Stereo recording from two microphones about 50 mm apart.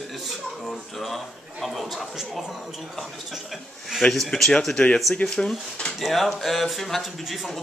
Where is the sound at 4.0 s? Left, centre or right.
Centre.